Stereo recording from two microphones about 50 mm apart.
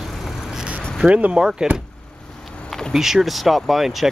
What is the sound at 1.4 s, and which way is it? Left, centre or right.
Speech, centre.